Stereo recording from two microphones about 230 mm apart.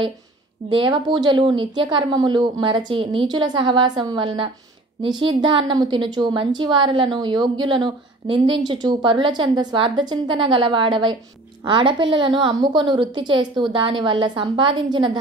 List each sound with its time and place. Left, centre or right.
0.7 s speech: right